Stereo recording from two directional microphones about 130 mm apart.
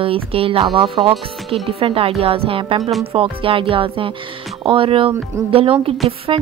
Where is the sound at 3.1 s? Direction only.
45° right (ahead or behind).